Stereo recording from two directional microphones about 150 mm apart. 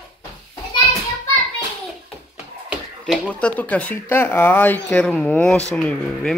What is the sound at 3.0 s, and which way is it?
Speech, 5° left (ahead or behind).